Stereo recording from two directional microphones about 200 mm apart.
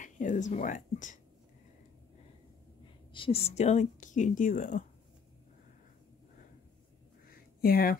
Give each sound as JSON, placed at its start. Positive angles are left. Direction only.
{"t": 0.0, "sound": "a woman's voice", "side_deg": 40}
{"t": 3.1, "sound": "a woman's voice", "side_deg": 25}
{"t": 7.2, "sound": "a sound", "side_deg": 45}